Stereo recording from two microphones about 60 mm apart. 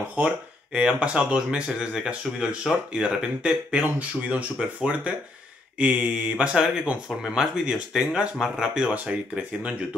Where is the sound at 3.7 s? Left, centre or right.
Right.